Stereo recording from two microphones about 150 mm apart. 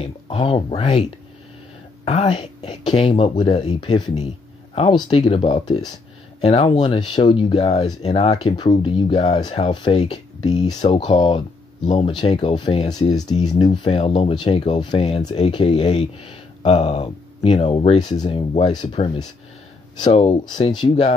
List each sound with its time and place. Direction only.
0.0 s speech: 35° left (ahead or behind)
2.0 s speech: 40° left (ahead or behind)
9.7 s speech: 30° left (ahead or behind)